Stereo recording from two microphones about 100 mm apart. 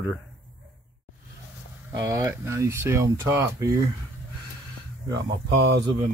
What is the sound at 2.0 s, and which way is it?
Speech, 35° right (ahead or behind).